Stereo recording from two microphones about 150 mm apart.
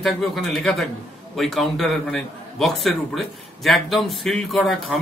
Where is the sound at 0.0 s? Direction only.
Centre (ahead or behind).